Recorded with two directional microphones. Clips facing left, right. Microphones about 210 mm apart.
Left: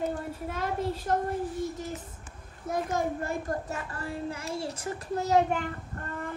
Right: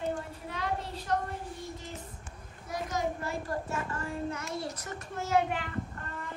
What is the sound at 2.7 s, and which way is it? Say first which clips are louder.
Speech: left 4 dB; 50° left (ahead or behind).